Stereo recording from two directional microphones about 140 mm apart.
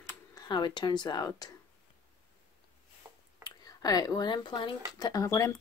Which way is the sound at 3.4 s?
25° left (ahead or behind).